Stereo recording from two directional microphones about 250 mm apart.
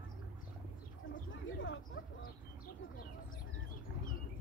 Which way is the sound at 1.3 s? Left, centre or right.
Left.